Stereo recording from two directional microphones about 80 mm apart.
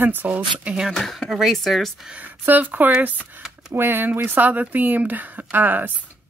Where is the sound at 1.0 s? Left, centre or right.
Centre.